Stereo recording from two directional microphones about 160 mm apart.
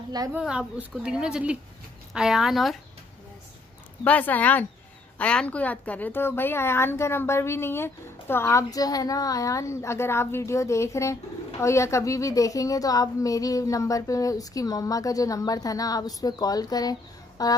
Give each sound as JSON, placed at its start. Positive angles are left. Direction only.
{"t": 0.3, "sound": "a woman's voice", "side_deg": -5}
{"t": 4.0, "sound": "a woman's voice", "side_deg": 10}